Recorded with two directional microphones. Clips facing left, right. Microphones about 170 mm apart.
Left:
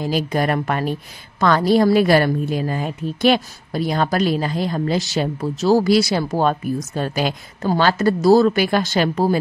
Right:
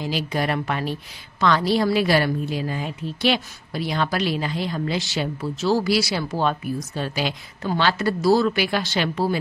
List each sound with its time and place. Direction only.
0.0 s a woman's voice: 45° left (ahead or behind)